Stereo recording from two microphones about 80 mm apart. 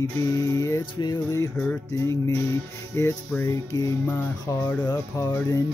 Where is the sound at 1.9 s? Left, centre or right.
Left.